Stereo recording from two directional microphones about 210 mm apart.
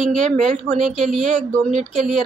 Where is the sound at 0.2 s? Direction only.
35° right (ahead or behind).